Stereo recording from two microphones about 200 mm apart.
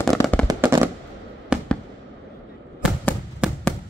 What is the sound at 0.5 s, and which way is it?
Fireworks, 15° right (ahead or behind).